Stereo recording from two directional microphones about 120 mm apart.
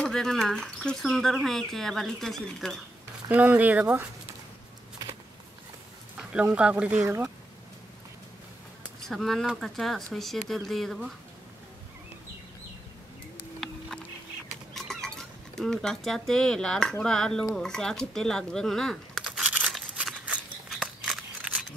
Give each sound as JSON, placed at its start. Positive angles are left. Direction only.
{"t": 0.0, "sound": "speech", "side_deg": 5}
{"t": 3.3, "sound": "speech", "side_deg": -10}
{"t": 6.1, "sound": "speech", "side_deg": -10}
{"t": 7.0, "sound": "speech", "side_deg": -25}
{"t": 9.0, "sound": "speech", "side_deg": 0}
{"t": 13.6, "sound": "a sound", "side_deg": 0}
{"t": 14.7, "sound": "cat", "side_deg": 5}
{"t": 17.0, "sound": "speech", "side_deg": 5}
{"t": 19.2, "sound": "a sound", "side_deg": -10}
{"t": 19.7, "sound": "scissors", "side_deg": -5}